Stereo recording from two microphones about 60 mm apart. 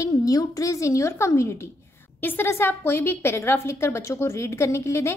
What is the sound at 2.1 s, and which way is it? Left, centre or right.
A woman's voice, left.